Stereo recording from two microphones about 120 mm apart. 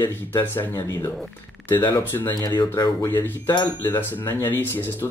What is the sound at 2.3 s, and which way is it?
Speech, 35° left (ahead or behind).